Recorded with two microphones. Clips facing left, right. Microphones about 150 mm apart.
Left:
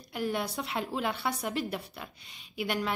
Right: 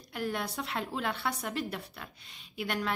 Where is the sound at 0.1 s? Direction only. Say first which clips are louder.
Left 2 dB; centre (ahead or behind).